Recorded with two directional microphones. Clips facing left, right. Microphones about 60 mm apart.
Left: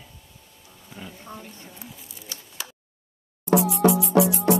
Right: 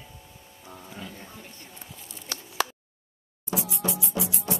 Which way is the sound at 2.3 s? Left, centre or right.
Right.